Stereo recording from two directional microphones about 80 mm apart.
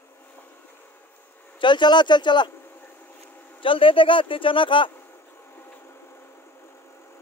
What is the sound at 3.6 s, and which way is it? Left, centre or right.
Speech, left.